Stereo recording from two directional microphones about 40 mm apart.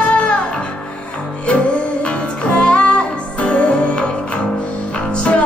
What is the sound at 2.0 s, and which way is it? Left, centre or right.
Music, left.